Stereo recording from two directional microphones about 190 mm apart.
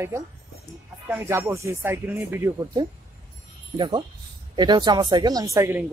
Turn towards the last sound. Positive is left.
turn(degrees=-15)  # may be behind; listen again after turning